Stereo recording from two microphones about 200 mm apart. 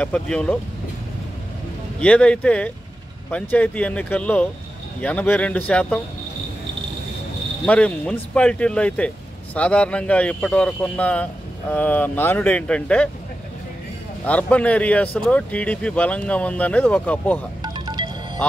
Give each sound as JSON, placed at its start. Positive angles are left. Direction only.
{"t": 0.0, "sound": "speech", "side_deg": 5}
{"t": 2.0, "sound": "speech", "side_deg": 5}
{"t": 7.6, "sound": "speech", "side_deg": 5}
{"t": 14.2, "sound": "speech", "side_deg": 5}
{"t": 17.6, "sound": "music", "side_deg": -20}